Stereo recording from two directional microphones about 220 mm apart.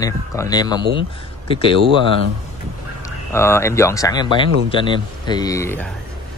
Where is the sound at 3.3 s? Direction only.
10° left (ahead or behind).